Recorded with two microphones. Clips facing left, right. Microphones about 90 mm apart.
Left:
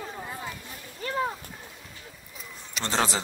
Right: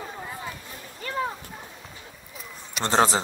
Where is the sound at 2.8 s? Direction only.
35° right (ahead or behind).